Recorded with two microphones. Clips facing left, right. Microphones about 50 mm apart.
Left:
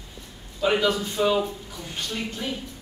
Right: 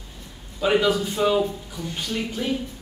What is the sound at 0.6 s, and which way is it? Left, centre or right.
Speech, centre.